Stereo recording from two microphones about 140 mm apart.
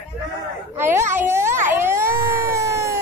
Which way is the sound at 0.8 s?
15° right (ahead or behind).